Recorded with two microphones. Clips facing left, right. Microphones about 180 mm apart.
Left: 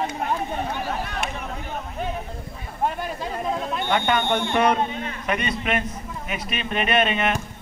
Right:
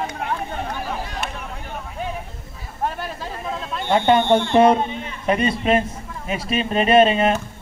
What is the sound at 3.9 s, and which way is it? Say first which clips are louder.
A man's voice: right 7 dB; 30° right (ahead or behind).